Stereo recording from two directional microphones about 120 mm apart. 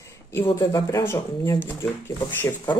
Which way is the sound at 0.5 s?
25° left (ahead or behind).